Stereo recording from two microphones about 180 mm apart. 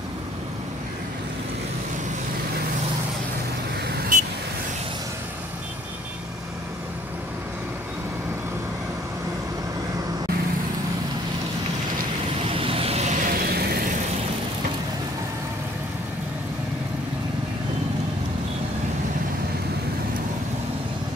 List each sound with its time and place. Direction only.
3.9 s vehicle: 45° right (ahead or behind)
12.4 s vehicle: 30° right (ahead or behind); by 13.7 s 60° right (ahead or behind)